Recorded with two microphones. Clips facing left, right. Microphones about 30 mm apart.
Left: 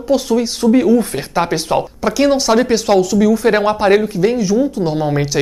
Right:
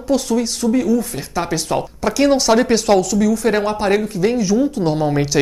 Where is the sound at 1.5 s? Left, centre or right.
Centre.